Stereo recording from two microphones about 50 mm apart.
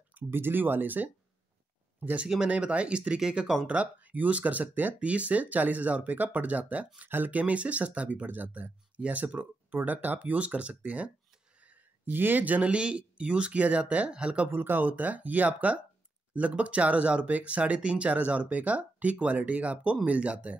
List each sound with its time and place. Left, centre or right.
0.1 s speech: right
2.2 s speech: centre
2.5 s speech: right
14.5 s speech: right